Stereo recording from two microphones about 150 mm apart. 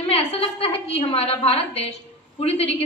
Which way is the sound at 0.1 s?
40° left (ahead or behind).